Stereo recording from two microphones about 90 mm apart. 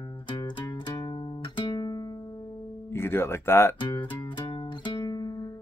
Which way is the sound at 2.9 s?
25° left (ahead or behind).